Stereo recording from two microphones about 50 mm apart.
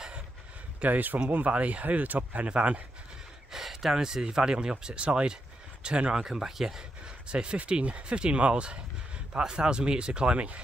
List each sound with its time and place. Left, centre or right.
0.8 s a man's voice: right
3.5 s a sound: centre
4.0 s speech: centre
7.2 s speech: right